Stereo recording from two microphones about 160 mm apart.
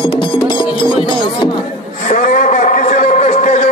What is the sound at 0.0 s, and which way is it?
Music, 30° left (ahead or behind).